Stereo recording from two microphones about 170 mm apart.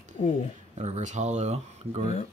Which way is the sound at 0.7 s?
40° right (ahead or behind).